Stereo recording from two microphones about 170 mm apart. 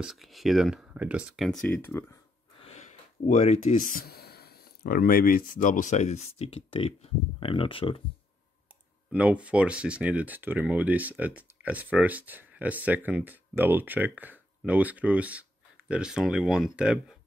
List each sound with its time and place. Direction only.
0.0 s speech: centre (ahead or behind)
2.6 s speech: 40° left (ahead or behind)
9.1 s speech: 10° right (ahead or behind)